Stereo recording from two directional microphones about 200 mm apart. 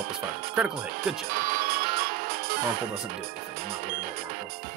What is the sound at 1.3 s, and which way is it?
Music, 50° right (ahead or behind).